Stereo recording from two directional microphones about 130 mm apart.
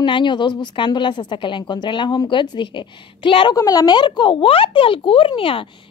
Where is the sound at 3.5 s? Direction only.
25° left (ahead or behind).